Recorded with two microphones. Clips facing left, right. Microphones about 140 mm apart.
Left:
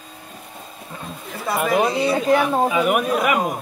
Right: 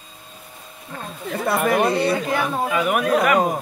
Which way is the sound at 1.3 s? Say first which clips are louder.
Right 1 dB; 60° right (ahead or behind).